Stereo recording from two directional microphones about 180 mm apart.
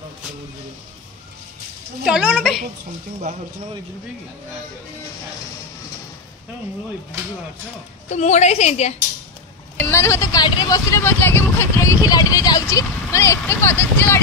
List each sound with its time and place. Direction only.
2.0 s a sound: 5° right (ahead or behind)
8.1 s a woman's voice: 40° left (ahead or behind)
9.8 s speech: 15° left (ahead or behind)